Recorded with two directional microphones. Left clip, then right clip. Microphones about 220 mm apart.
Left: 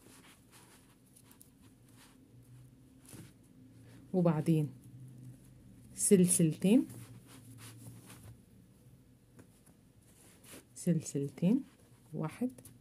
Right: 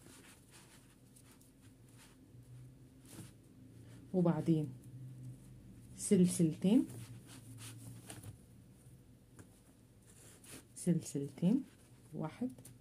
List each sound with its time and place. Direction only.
4.1 s speech: 30° left (ahead or behind)
5.9 s speech: 30° left (ahead or behind)
10.8 s speech: 20° left (ahead or behind)
12.2 s speech: 30° left (ahead or behind)